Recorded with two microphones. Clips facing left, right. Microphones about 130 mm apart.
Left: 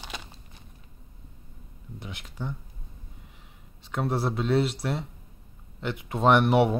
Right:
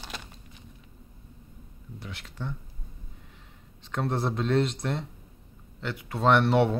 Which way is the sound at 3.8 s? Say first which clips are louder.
Left 1 dB; 5° left (ahead or behind).